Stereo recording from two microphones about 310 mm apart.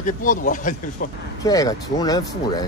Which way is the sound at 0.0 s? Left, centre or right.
Left.